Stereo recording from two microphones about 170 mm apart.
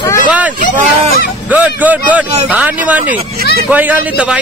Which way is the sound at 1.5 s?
10° right (ahead or behind).